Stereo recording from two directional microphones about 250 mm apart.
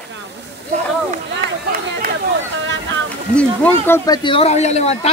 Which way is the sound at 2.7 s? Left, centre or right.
Right.